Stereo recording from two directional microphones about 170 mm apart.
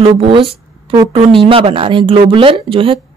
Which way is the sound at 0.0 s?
30° right (ahead or behind).